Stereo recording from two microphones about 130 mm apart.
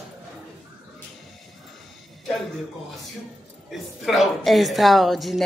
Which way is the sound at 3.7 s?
Centre (ahead or behind).